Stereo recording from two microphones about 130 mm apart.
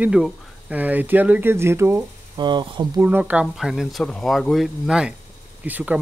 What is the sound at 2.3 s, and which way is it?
Speech, 35° right (ahead or behind).